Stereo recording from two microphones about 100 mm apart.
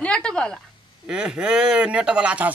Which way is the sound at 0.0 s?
10° left (ahead or behind).